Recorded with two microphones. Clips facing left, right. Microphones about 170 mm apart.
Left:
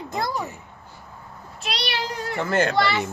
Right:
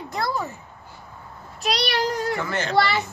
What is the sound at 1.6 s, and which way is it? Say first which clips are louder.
Speech: right 5 dB; 40° right (ahead or behind).